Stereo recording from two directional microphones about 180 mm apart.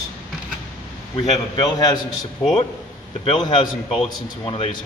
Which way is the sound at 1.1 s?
25° left (ahead or behind).